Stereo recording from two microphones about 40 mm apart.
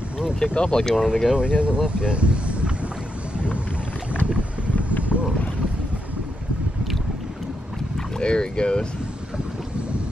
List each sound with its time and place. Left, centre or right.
0.6 s speech: left
0.9 s speech: centre
1.3 s speech: right
5.1 s boat: right
8.2 s speech: left